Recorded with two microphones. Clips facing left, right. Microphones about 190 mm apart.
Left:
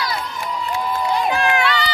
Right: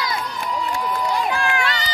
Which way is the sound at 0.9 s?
25° left (ahead or behind).